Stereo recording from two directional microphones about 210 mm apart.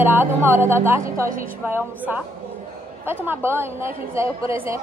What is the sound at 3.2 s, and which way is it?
Speech, 10° right (ahead or behind).